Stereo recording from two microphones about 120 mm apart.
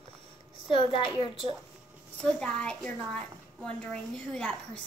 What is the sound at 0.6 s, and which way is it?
Speech, 45° left (ahead or behind).